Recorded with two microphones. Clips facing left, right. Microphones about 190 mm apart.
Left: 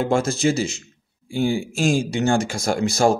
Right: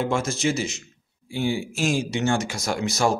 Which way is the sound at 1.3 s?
45° left (ahead or behind).